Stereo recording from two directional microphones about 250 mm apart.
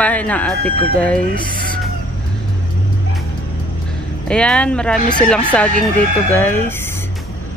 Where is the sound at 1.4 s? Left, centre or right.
Centre.